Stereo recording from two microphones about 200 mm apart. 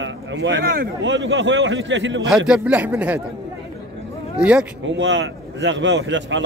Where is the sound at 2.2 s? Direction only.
Centre (ahead or behind).